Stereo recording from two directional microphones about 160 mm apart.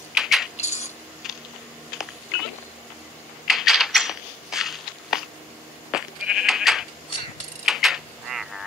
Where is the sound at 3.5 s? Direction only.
Centre (ahead or behind).